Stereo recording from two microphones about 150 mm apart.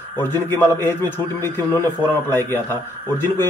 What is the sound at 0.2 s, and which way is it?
A man's voice, 15° left (ahead or behind).